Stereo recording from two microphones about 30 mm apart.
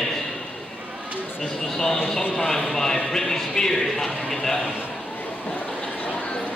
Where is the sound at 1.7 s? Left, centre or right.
Centre.